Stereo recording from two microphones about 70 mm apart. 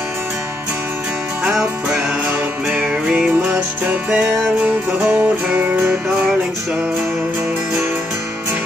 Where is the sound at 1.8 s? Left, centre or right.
Centre.